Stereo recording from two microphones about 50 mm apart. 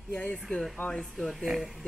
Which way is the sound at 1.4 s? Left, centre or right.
Centre.